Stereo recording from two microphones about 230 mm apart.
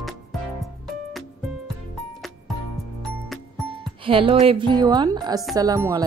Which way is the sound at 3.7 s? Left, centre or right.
Right.